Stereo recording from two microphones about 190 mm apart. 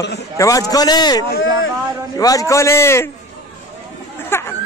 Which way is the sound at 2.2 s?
20° left (ahead or behind).